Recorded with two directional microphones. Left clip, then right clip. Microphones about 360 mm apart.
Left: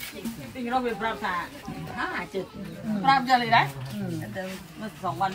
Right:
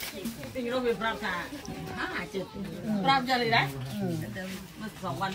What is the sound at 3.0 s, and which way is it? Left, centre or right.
Speech, centre.